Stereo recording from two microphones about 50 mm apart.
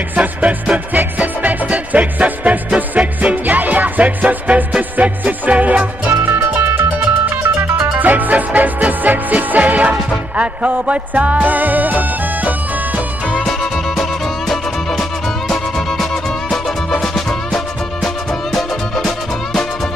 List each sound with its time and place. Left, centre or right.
0.1 s music: right
6.3 s music: right
7.9 s music: right
13.4 s music: centre